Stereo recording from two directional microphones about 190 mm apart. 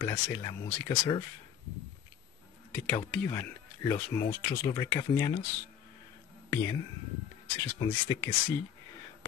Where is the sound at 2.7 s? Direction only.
5° left (ahead or behind).